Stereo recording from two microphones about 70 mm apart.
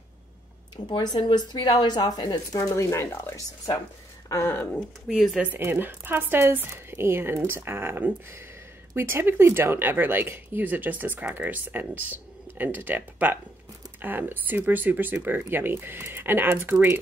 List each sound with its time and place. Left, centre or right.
0.8 s speech: left
2.7 s speech: left
5.0 s speech: centre
5.6 s speech: right